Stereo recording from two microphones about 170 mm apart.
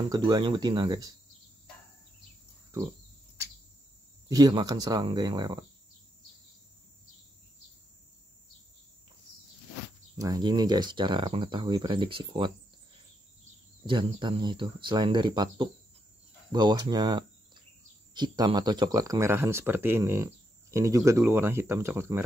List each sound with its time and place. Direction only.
0.1 s speech: 25° right (ahead or behind)
4.3 s speech: 20° right (ahead or behind)
10.1 s speech: 20° right (ahead or behind)
13.8 s speech: 30° right (ahead or behind)